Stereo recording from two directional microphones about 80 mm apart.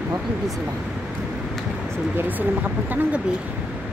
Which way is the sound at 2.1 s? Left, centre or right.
Right.